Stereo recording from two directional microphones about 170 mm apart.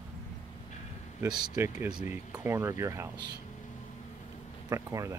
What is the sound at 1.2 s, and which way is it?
Speech, 25° right (ahead or behind).